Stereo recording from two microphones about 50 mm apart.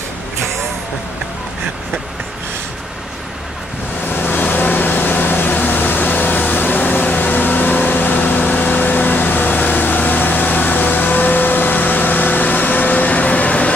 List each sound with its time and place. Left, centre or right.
4.1 s vehicle: left